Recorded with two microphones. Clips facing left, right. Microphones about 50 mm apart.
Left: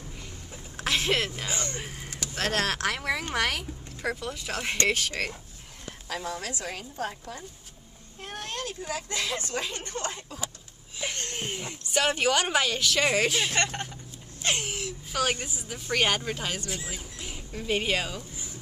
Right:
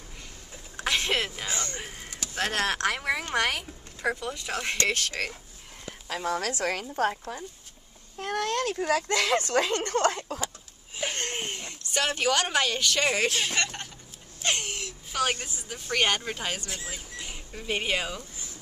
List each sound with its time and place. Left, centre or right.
0.7 s a woman's voice: centre
1.8 s speech: centre
6.3 s speech: right
8.2 s speech: right
11.0 s wheeze: right
11.4 s speech: centre
13.6 s speech: left
14.4 s whimper: centre
15.3 s speech: centre